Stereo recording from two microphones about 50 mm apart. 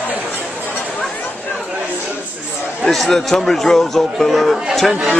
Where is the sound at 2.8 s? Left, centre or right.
Centre.